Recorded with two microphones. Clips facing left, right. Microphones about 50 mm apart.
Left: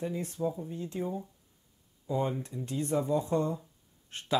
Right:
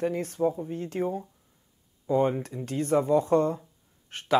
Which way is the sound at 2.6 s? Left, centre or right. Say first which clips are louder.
Right 6 dB; right.